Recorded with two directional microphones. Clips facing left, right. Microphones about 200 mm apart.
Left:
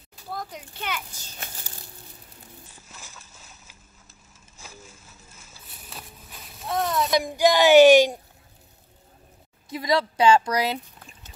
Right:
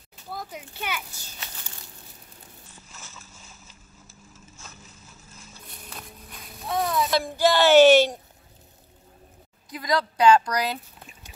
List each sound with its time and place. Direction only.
0.3 s a child's voice: 5° right (ahead or behind)
5.5 s a sound: 5° left (ahead or behind)
7.1 s speech: 15° left (ahead or behind)
9.7 s speech: 25° left (ahead or behind)